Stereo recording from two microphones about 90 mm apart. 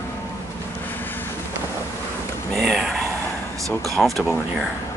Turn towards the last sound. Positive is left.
turn(degrees=0)  # may be behind; listen again after turning